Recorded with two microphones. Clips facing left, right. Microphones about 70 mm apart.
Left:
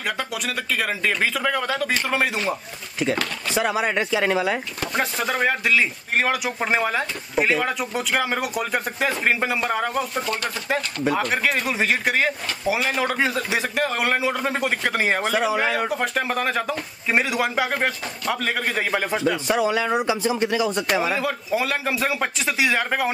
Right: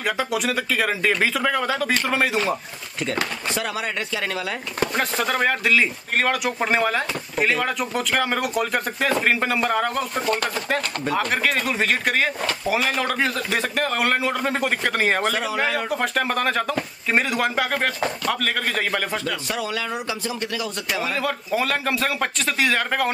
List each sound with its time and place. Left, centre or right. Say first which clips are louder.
0.0 s speech: right 4 dB; centre
3.5 s speech: left 7 dB; centre
4.9 s speech: left 2 dB; centre
10.2 s chopping: right 3 dB; right
10.7 s speech: left 3 dB; centre
19.2 s a man's voice: left 6 dB; left
20.6 s speech: left 5 dB; centre